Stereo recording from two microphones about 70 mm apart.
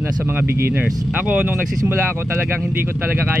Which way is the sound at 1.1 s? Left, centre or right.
Centre.